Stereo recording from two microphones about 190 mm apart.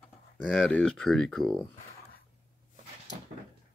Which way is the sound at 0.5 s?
5° left (ahead or behind).